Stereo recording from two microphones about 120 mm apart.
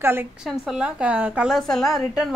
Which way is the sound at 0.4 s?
5° right (ahead or behind).